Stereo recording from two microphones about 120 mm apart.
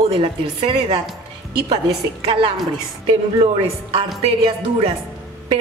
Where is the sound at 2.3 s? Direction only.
50° right (ahead or behind).